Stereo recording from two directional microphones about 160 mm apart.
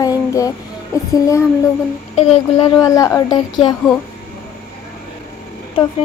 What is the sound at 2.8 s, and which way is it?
Speech, 20° left (ahead or behind).